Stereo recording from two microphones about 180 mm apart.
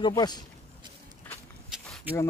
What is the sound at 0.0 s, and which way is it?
Speech, 25° left (ahead or behind).